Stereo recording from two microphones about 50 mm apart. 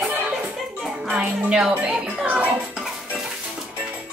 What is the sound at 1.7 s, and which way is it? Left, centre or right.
Speech, right.